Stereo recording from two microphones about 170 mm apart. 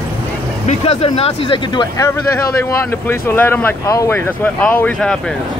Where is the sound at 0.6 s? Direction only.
35° left (ahead or behind).